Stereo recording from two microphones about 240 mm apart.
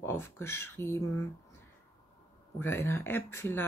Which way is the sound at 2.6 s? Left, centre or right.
Centre.